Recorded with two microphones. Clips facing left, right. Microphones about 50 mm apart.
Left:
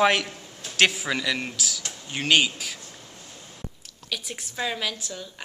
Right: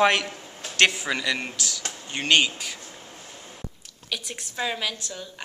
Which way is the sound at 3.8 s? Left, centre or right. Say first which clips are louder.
Even; centre.